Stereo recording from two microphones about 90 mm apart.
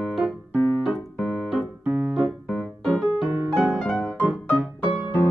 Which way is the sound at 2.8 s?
5° left (ahead or behind).